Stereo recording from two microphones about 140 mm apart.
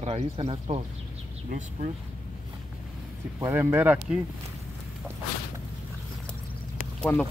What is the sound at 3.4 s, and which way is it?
Speech, 20° right (ahead or behind).